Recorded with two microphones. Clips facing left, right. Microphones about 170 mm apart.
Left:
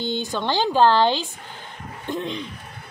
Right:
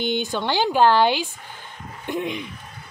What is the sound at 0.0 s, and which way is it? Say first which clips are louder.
A woman's voice: right 1 dB; 15° right (ahead or behind).